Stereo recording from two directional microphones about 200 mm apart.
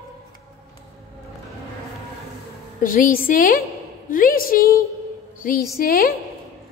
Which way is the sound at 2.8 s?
45° left (ahead or behind).